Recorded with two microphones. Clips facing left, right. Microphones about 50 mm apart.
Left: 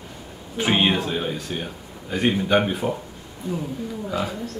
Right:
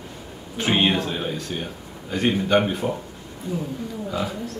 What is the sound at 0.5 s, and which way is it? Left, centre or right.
Speech, centre.